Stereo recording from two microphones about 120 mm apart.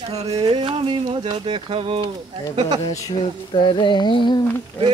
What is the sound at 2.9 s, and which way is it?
Speech, 25° left (ahead or behind).